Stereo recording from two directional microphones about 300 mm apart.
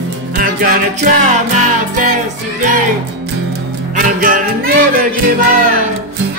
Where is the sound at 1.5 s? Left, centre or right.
Right.